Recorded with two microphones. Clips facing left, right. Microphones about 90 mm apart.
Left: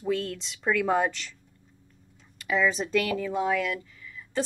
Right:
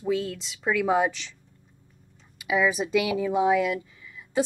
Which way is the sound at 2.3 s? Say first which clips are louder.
Right 2 dB; 10° right (ahead or behind).